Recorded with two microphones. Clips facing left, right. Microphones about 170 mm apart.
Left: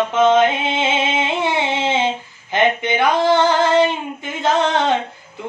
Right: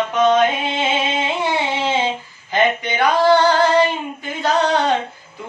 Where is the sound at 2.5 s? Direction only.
20° left (ahead or behind).